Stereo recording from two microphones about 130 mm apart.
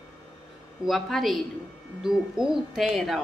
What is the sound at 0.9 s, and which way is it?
Speech, centre (ahead or behind).